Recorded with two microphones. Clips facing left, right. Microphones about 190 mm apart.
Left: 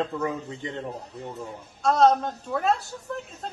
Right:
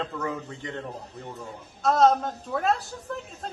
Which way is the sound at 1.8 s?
Centre (ahead or behind).